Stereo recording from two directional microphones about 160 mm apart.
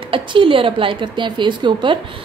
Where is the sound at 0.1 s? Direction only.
35° right (ahead or behind).